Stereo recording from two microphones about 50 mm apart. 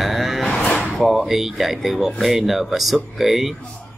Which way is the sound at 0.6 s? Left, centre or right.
Centre.